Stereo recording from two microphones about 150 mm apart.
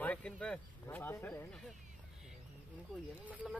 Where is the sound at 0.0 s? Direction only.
10° left (ahead or behind).